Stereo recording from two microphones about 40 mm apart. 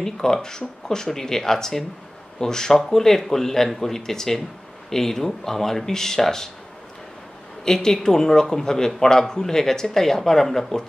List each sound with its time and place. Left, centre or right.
0.0 s speech: centre
7.6 s speech: centre